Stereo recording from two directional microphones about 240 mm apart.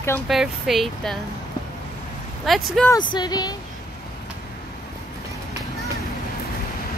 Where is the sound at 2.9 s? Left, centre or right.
Centre.